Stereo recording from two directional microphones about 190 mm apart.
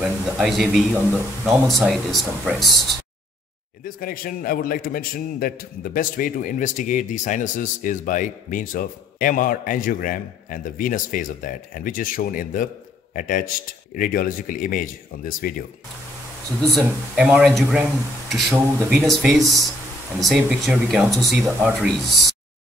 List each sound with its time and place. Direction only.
0.0 s speech: centre (ahead or behind)
3.8 s a man's voice: 50° left (ahead or behind)
16.7 s speech: 5° right (ahead or behind)